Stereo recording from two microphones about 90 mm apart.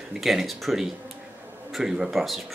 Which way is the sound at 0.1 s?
5° right (ahead or behind).